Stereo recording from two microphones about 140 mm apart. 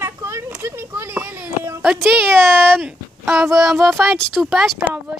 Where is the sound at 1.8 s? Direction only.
5° right (ahead or behind).